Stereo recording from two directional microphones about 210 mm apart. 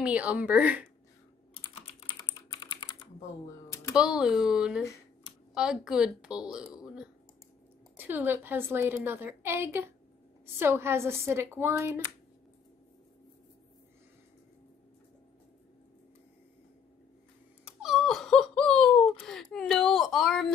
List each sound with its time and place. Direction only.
0.0 s a woman's voice: 5° right (ahead or behind)
1.5 s typing: 30° left (ahead or behind)
3.9 s a woman's voice: 5° right (ahead or behind)
8.0 s a woman's voice: 10° right (ahead or behind)
17.6 s giggle: 5° right (ahead or behind)